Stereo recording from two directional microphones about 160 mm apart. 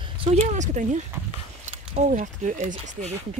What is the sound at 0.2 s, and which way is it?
Speech, 40° right (ahead or behind).